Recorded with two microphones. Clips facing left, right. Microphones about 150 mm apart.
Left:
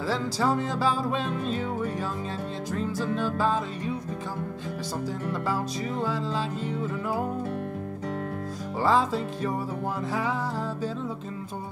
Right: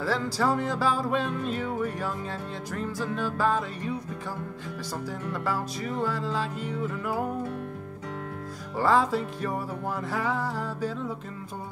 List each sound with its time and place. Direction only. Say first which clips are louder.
0.0 s music: even; 25° left (ahead or behind)
5.3 s music: even; 20° left (ahead or behind)
8.7 s music: right 1 dB; 25° left (ahead or behind)